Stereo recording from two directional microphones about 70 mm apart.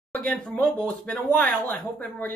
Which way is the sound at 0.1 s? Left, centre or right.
Centre.